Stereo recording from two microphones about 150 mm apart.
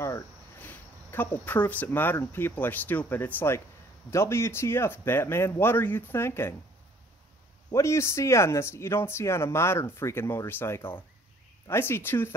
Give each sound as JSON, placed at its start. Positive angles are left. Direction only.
{"t": 0.0, "sound": "speech", "side_deg": 15}
{"t": 7.7, "sound": "speech", "side_deg": 20}